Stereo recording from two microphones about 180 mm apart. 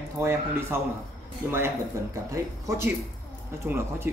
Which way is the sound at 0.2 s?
15° right (ahead or behind).